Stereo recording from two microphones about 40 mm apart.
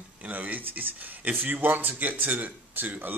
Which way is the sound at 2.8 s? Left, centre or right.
Right.